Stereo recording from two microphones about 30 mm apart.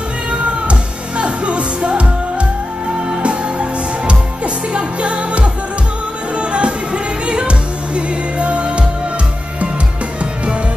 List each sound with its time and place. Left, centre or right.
0.3 s music: right
3.2 s music: right
4.7 s music: right